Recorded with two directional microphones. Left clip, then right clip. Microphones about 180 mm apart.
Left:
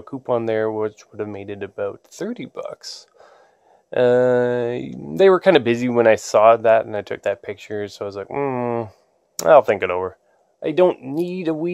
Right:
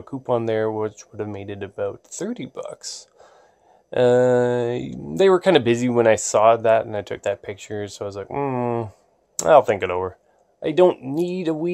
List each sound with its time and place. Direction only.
0.0 s speech: 20° left (ahead or behind)